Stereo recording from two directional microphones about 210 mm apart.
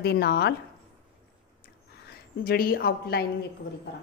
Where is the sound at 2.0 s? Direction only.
45° left (ahead or behind).